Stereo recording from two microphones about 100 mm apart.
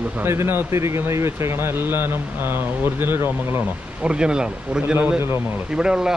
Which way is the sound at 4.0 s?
10° right (ahead or behind).